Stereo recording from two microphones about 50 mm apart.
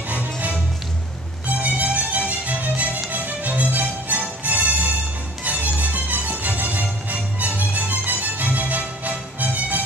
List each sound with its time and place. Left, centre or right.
0.1 s music: right
1.6 s music: right